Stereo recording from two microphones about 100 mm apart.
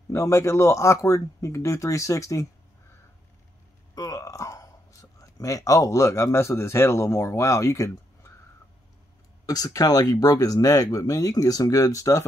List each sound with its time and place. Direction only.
0.1 s a man's voice: 30° left (ahead or behind)
3.9 s a sound: 35° left (ahead or behind)
5.2 s a man's voice: 35° left (ahead or behind)
9.5 s speech: 40° left (ahead or behind)